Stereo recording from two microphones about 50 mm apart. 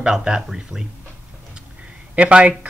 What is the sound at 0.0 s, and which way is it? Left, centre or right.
Speech, centre.